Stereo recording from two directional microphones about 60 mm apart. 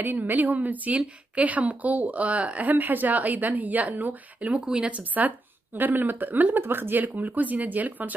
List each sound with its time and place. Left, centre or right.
0.0 s a woman's voice: right